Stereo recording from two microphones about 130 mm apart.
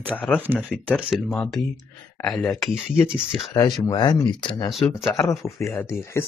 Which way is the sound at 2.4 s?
Centre (ahead or behind).